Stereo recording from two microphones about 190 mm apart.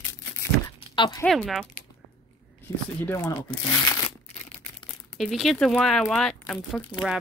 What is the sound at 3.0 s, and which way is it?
Speech, 15° left (ahead or behind).